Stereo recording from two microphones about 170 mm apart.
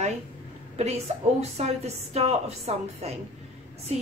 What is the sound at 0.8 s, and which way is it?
A woman's voice, 40° right (ahead or behind).